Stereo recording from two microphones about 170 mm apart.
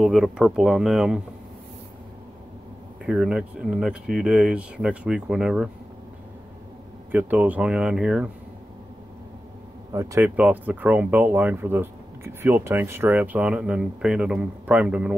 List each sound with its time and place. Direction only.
0.0 s speech: centre (ahead or behind)
3.1 s speech: 5° right (ahead or behind)
7.1 s speech: 10° right (ahead or behind)
9.9 s speech: 15° right (ahead or behind)